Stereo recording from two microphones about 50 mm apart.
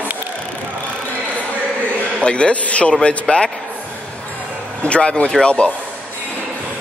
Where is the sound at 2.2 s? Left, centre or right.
Left.